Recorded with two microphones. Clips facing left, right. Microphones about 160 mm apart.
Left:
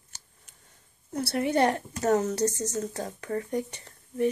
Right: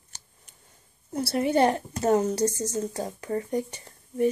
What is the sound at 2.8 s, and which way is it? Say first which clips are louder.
Speech: right 2 dB; 30° right (ahead or behind).